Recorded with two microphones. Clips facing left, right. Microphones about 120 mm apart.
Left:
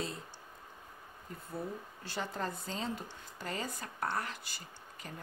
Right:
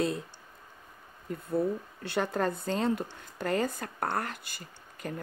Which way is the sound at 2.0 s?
65° right (ahead or behind).